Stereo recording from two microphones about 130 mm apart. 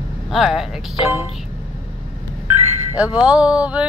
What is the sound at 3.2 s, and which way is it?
Speech, 10° right (ahead or behind).